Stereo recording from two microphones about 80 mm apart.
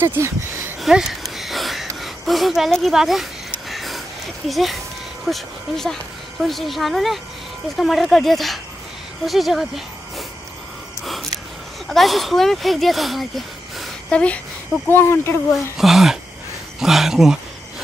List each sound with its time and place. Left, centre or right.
0.0 s speech: right
0.8 s a sound: centre
2.9 s speech: centre
3.7 s a sound: centre
4.5 s speech: centre
11.9 s speech: centre
14.1 s speech: centre
14.9 s speech: left
15.8 s speech: centre
16.8 s a sound: centre